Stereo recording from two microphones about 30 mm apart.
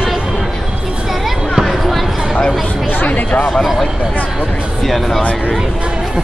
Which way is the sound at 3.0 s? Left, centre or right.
Left.